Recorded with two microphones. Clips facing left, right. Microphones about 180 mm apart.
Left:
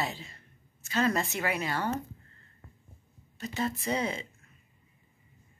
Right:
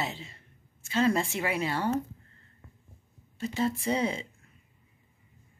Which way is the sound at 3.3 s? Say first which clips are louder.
Right 4 dB; 30° right (ahead or behind).